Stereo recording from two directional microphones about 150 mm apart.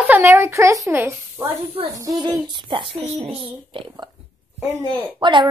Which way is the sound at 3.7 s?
35° right (ahead or behind).